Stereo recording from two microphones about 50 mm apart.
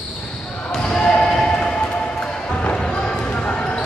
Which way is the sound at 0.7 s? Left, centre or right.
Centre.